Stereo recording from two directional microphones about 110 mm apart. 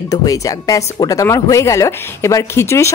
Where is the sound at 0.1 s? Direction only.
30° left (ahead or behind).